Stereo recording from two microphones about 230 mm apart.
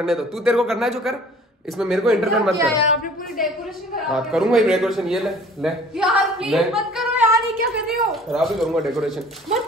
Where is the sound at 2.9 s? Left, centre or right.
Left.